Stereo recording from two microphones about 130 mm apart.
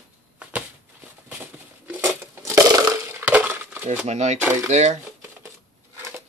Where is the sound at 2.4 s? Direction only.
25° right (ahead or behind).